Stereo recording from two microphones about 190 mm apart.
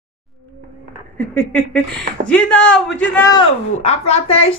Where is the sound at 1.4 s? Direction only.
5° left (ahead or behind).